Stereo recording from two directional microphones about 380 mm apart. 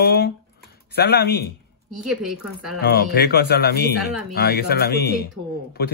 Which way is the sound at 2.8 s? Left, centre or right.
Left.